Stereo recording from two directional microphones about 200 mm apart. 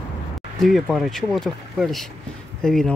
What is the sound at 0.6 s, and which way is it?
Speech, centre (ahead or behind).